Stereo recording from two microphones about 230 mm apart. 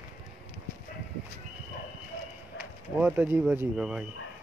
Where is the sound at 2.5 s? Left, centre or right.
Left.